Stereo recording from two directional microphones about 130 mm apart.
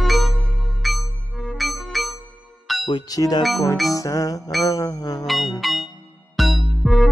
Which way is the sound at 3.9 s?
25° left (ahead or behind).